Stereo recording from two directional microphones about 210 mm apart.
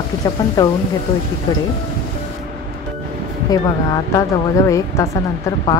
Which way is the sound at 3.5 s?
15° left (ahead or behind).